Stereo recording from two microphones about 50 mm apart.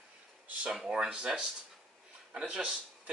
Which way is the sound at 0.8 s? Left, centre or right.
Centre.